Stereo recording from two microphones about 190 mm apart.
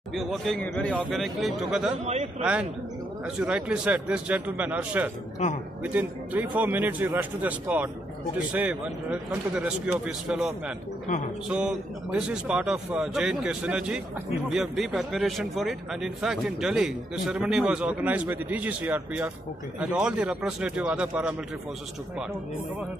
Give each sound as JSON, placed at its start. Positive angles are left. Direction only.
{"t": 0.1, "sound": "a man's voice", "side_deg": 0}
{"t": 3.3, "sound": "a man's voice", "side_deg": -5}
{"t": 5.4, "sound": "speech", "side_deg": 40}
{"t": 5.9, "sound": "a man's voice", "side_deg": -10}